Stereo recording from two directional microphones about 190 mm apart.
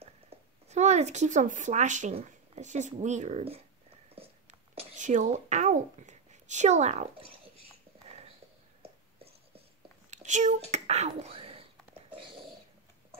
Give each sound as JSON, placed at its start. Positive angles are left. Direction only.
{"t": 0.7, "sound": "speech", "side_deg": -35}
{"t": 4.1, "sound": "a sound", "side_deg": -30}
{"t": 10.1, "sound": "speech", "side_deg": -40}